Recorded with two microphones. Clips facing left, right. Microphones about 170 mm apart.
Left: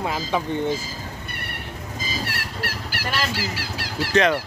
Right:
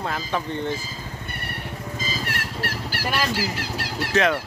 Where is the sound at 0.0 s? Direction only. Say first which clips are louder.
Left 2 dB; 15° left (ahead or behind).